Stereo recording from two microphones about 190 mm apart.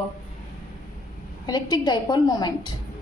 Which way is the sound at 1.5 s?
20° left (ahead or behind).